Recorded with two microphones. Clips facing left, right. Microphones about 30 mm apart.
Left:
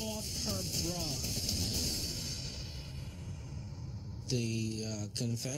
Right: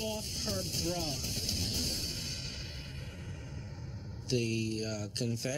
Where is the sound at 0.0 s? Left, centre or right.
Right.